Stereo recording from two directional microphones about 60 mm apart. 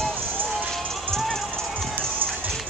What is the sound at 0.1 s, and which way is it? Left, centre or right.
Run, right.